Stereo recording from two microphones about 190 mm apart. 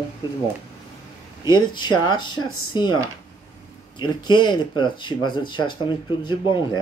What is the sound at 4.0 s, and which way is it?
Speech, 25° left (ahead or behind).